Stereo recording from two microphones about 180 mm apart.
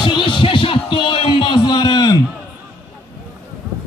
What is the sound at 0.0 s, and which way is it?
Music, 25° left (ahead or behind).